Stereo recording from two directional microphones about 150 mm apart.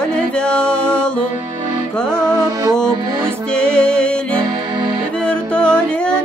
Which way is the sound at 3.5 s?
5° left (ahead or behind).